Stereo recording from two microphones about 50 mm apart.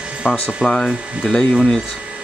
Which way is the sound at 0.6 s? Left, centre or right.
Centre.